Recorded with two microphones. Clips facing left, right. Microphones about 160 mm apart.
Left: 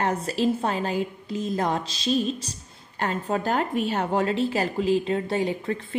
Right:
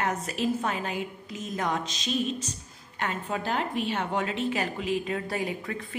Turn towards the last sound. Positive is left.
turn(degrees=30)  # may be behind; listen again after turning